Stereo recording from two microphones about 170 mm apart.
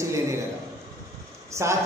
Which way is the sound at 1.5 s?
15° right (ahead or behind).